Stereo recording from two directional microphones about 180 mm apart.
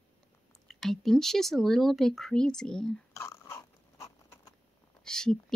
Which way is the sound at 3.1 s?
15° left (ahead or behind).